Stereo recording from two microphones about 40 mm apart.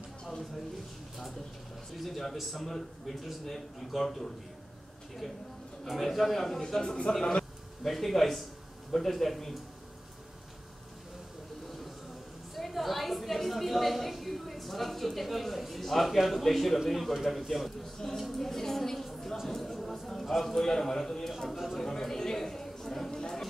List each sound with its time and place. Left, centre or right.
2.0 s a man's voice: centre
7.1 s a man's voice: left
7.8 s a man's voice: centre
12.5 s a woman's voice: centre
19.4 s a sound: centre
20.1 s a man's voice: centre
21.8 s a sound: centre